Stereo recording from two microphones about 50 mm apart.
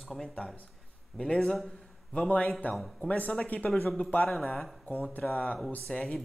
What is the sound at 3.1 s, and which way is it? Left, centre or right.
Speech, left.